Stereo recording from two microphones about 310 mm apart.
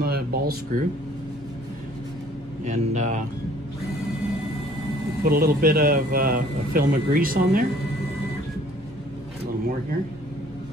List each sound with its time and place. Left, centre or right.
0.0 s speech: right
2.6 s a man's voice: right
5.2 s a man's voice: right